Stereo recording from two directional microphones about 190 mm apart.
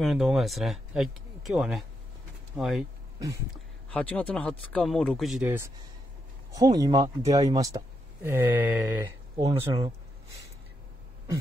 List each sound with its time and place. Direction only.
0.0 s speech: centre (ahead or behind)
3.9 s speech: 5° left (ahead or behind); by 5.7 s 10° right (ahead or behind)
6.5 s speech: 20° right (ahead or behind)